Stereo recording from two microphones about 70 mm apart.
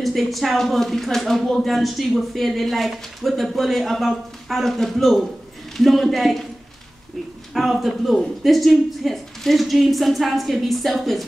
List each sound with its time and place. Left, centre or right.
0.0 s speech: centre
7.5 s speech: centre